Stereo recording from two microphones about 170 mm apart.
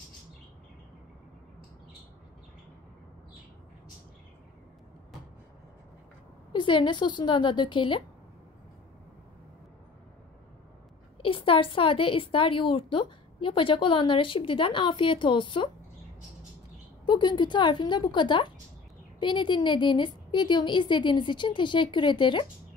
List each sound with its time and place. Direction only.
6.5 s a woman's voice: 30° left (ahead or behind)
11.1 s a woman's voice: 30° left (ahead or behind)
17.0 s a woman's voice: 25° left (ahead or behind)